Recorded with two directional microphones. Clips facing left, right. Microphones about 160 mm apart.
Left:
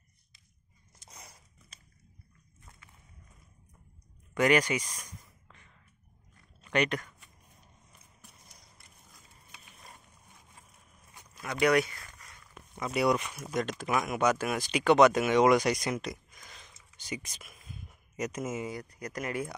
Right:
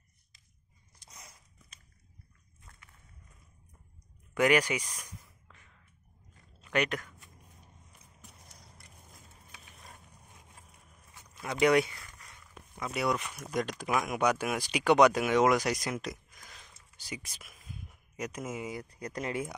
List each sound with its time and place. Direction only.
4.3 s speech: 10° right (ahead or behind)
4.9 s a sound: 5° right (ahead or behind)
6.7 s speech: 5° right (ahead or behind)
11.6 s speech: 20° right (ahead or behind)
12.7 s speech: 5° left (ahead or behind)
13.7 s speech: 15° right (ahead or behind)
13.9 s speech: centre (ahead or behind)
17.5 s a sound: 5° right (ahead or behind)
18.7 s speech: 25° right (ahead or behind)